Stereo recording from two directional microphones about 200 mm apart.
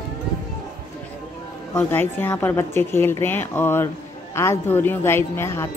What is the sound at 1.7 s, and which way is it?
Speech, 10° left (ahead or behind).